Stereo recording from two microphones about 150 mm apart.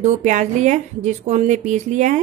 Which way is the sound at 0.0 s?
55° right (ahead or behind).